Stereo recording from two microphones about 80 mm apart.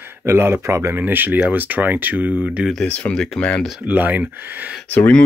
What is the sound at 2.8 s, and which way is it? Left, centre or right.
Speech, centre.